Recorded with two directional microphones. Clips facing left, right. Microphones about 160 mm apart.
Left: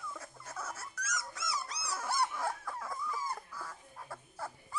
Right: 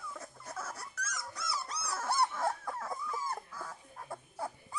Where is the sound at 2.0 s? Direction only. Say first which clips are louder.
Right 3 dB; 25° right (ahead or behind).